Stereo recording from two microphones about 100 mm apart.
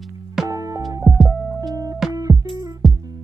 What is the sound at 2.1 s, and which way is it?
Music, 35° right (ahead or behind).